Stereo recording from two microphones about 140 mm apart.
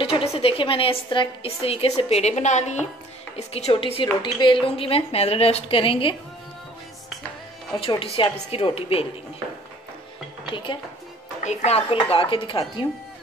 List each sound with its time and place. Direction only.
0.0 s a woman's voice: 45° left (ahead or behind)
7.7 s speech: 40° left (ahead or behind)
10.5 s speech: 35° left (ahead or behind)
11.4 s speech: 50° left (ahead or behind)